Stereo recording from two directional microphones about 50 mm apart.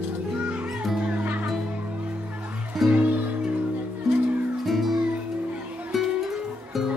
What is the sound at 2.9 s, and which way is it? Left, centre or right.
Music, right.